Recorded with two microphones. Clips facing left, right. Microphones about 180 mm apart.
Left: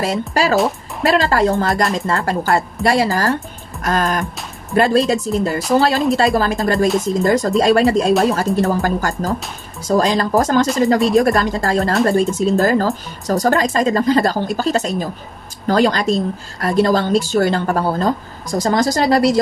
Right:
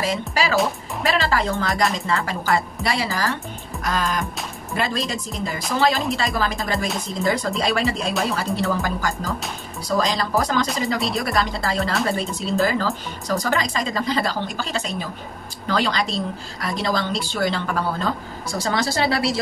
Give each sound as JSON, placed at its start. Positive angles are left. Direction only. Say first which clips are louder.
{"t": 0.3, "sound": "speech", "louder": "left 6 dB", "side_deg": 45}
{"t": 9.8, "sound": "speech", "louder": "left 6 dB", "side_deg": 45}